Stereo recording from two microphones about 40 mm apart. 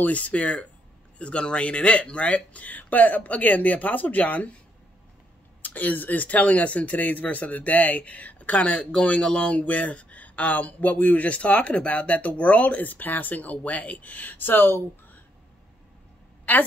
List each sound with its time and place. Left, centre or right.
0.0 s speech: left
5.8 s speech: left
9.2 s speech: left
9.7 s speech: left
16.5 s a woman's voice: left